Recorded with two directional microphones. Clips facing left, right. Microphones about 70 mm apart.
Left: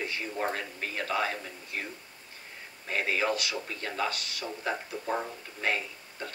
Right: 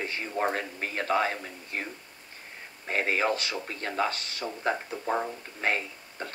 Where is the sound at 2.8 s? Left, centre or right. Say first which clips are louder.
Right 2 dB; right.